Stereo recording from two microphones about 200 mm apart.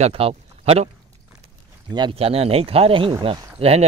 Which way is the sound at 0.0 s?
30° right (ahead or behind).